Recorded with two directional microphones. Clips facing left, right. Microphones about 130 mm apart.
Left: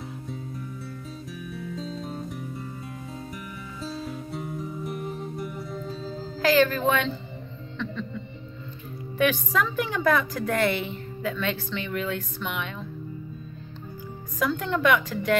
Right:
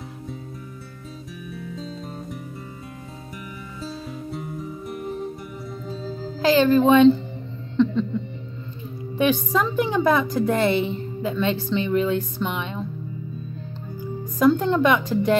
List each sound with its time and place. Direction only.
3.8 s music: centre (ahead or behind)
6.4 s a woman's voice: 25° right (ahead or behind)
7.7 s a sound: 30° right (ahead or behind)
9.2 s a woman's voice: 25° right (ahead or behind)
14.4 s a woman's voice: 30° right (ahead or behind)